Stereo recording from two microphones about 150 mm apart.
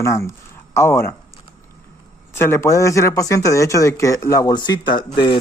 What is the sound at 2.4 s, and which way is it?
Speech, 15° left (ahead or behind).